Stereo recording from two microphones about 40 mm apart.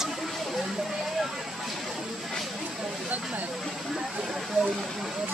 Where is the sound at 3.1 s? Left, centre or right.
Right.